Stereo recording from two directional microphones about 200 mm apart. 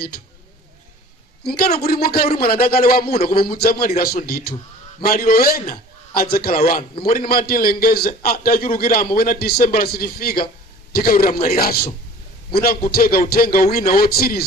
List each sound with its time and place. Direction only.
1.8 s a man's voice: 50° left (ahead or behind)